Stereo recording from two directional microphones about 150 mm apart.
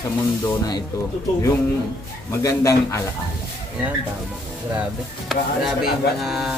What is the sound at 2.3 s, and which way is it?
Speech, 20° left (ahead or behind).